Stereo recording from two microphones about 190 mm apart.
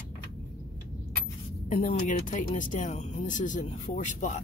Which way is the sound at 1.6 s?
45° left (ahead or behind).